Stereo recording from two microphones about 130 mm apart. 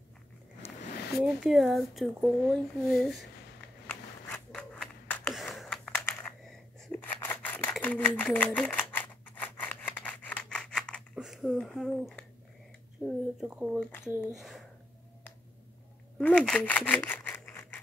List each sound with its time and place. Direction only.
1.2 s speech: centre (ahead or behind)
3.8 s crackle: 15° left (ahead or behind)
4.6 s a sound: 5° left (ahead or behind)
6.9 s scissors: 10° left (ahead or behind)
7.8 s speech: 10° left (ahead or behind)
8.6 s scissors: 10° left (ahead or behind)
13.0 s speech: 5° right (ahead or behind)
16.2 s a sound: 5° left (ahead or behind)